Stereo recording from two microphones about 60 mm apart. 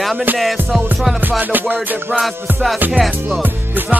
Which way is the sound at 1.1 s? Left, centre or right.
Right.